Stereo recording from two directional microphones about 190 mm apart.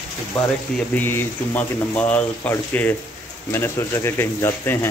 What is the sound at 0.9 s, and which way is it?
Speech, 10° left (ahead or behind).